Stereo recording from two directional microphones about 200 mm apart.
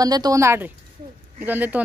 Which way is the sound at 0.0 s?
20° right (ahead or behind).